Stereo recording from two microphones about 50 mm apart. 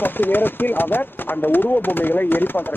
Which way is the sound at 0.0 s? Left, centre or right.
Left.